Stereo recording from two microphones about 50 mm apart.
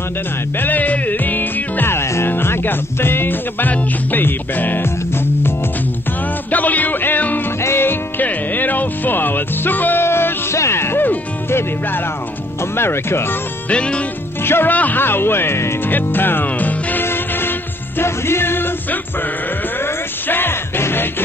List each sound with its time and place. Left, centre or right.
0.6 s music: left
1.9 s music: left
2.2 s music: left
6.5 s music: left
7.6 s music: left
10.0 s music: left
12.7 s music: left
13.7 s music: left
14.4 s music: left
14.7 s music: left
15.9 s music: left
17.0 s music: left
19.8 s music: left